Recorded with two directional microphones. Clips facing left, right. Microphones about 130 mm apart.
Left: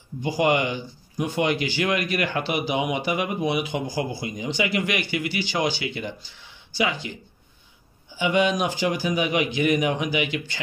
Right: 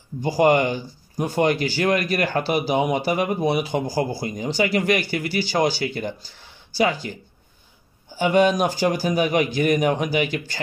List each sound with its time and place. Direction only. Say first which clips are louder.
0.2 s speech: right 4 dB; 40° right (ahead or behind)